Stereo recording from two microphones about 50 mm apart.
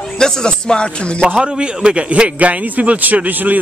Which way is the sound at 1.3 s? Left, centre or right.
Centre.